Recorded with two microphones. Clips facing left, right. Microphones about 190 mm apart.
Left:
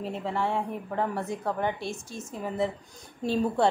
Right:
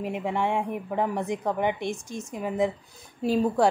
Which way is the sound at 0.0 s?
15° right (ahead or behind).